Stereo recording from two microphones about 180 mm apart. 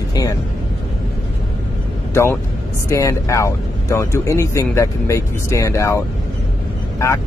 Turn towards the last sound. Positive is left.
turn(degrees=15)  # may be behind; listen again after turning